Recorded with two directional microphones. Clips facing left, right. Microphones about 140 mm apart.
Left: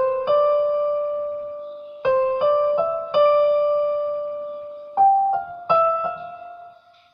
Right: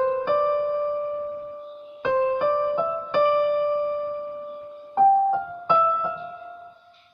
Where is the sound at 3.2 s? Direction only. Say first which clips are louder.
Left 5 dB; 20° left (ahead or behind).